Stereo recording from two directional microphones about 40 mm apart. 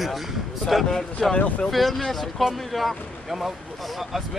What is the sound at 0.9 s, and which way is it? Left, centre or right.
Speech, centre.